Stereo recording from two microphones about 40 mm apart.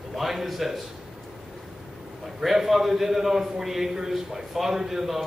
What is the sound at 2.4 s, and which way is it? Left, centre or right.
A man's voice, centre.